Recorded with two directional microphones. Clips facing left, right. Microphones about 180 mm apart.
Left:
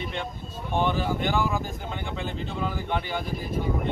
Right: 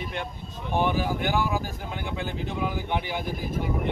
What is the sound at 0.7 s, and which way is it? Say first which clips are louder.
Speech: even; 10° right (ahead or behind).